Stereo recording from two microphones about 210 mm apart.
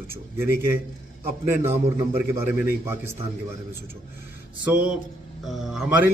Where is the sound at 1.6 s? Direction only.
10° right (ahead or behind).